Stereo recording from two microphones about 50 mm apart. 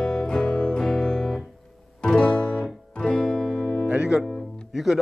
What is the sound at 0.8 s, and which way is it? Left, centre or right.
Music, centre.